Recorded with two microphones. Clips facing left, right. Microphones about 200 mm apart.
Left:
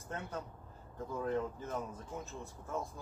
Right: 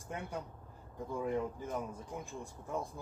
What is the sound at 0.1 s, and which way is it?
Speech, 10° right (ahead or behind).